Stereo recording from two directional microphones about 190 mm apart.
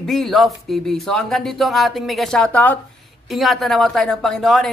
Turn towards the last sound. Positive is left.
turn(degrees=0)  # may be behind; listen again after turning